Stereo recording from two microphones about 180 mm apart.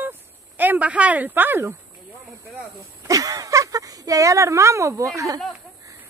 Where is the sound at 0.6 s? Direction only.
10° right (ahead or behind).